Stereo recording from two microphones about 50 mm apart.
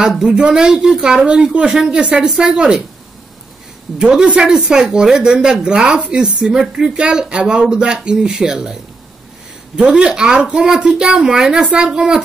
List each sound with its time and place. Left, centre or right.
0.1 s speech: centre
4.0 s speech: centre
9.8 s speech: centre